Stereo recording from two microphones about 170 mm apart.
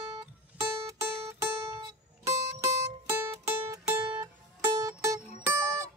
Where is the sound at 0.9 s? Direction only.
15° right (ahead or behind).